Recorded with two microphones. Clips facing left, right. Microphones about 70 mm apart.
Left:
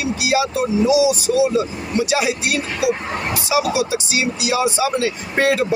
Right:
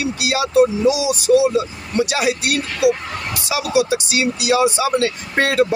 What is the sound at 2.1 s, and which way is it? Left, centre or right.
Speech, right.